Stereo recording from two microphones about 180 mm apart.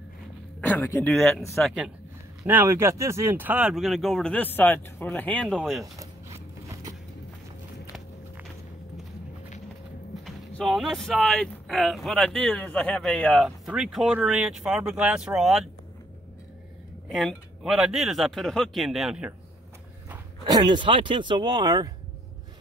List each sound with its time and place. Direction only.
0.6 s speech: 10° left (ahead or behind)
2.4 s speech: 10° right (ahead or behind)
6.7 s vehicle: 20° right (ahead or behind)
10.2 s speech: centre (ahead or behind)
17.1 s speech: centre (ahead or behind)
20.4 s speech: 25° right (ahead or behind)